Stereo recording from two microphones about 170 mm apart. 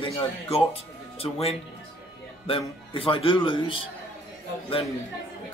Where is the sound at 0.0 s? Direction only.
35° left (ahead or behind).